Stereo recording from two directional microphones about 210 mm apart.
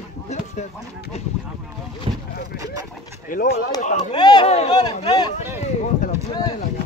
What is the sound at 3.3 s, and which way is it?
Speech, 40° left (ahead or behind).